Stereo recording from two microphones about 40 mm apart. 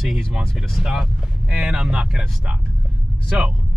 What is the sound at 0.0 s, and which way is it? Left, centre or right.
Speech, centre.